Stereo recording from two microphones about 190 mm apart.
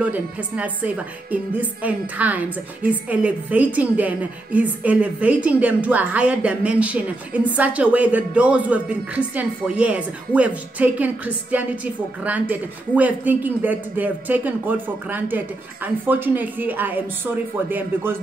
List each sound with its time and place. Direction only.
0.0 s a woman's voice: 5° right (ahead or behind)